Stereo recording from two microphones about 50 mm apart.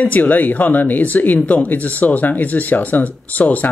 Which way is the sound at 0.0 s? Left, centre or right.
Left.